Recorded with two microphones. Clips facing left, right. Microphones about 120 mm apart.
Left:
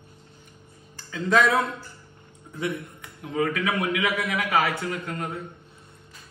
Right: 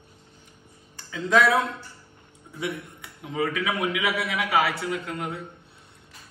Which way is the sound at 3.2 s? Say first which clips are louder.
Left 1 dB; 15° right (ahead or behind).